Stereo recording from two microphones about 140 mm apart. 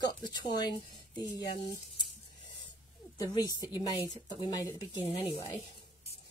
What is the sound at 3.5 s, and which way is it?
A woman's voice, 30° left (ahead or behind).